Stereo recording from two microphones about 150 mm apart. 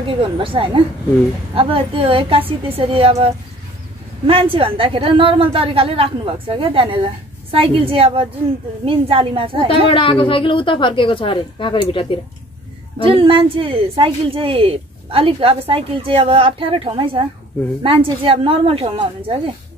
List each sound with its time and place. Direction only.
0.1 s speech: 35° right (ahead or behind)
4.3 s speech: 35° right (ahead or behind)
9.8 s a woman's voice: 35° left (ahead or behind)
13.0 s speech: 35° right (ahead or behind)